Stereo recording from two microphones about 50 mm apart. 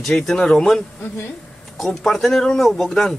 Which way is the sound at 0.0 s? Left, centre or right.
Centre.